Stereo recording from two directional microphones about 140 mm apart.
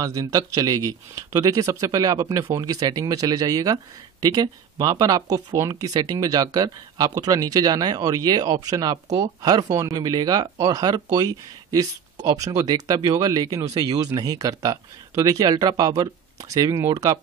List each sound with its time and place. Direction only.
0.0 s speech: 25° right (ahead or behind)